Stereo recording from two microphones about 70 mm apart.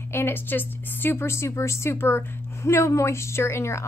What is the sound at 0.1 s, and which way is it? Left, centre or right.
A woman's voice, left.